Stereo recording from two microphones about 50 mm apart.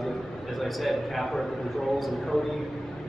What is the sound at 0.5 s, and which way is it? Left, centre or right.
Speech, centre.